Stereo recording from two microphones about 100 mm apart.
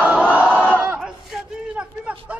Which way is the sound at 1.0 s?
10° right (ahead or behind).